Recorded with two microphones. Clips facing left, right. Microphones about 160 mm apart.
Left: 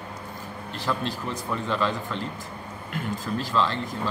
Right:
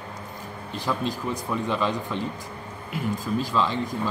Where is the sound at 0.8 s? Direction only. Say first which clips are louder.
Right 2 dB; 10° right (ahead or behind).